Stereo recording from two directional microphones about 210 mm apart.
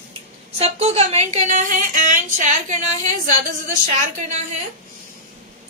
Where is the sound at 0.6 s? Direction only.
30° right (ahead or behind).